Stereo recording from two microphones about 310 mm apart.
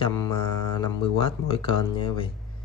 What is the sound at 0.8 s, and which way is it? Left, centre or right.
Speech, centre.